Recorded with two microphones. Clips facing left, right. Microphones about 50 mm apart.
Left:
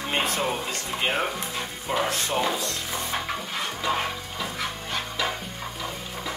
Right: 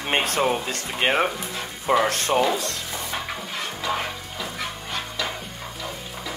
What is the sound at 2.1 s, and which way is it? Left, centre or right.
Speech, right.